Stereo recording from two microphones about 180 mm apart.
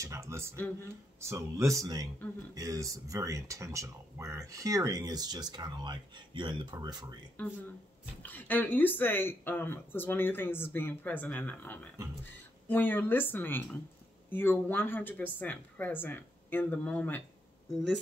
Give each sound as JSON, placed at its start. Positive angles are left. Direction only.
{"t": 0.0, "sound": "speech", "side_deg": -15}
{"t": 7.4, "sound": "speech", "side_deg": 10}